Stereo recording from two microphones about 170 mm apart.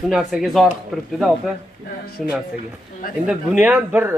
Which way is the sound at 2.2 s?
Centre (ahead or behind).